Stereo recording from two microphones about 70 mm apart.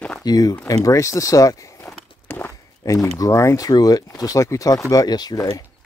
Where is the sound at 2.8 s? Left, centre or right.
Left.